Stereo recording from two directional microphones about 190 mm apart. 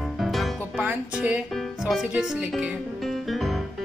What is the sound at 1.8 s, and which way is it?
Speech, centre (ahead or behind).